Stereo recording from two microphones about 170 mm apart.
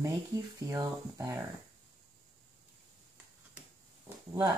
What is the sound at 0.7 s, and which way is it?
Speech, 20° right (ahead or behind).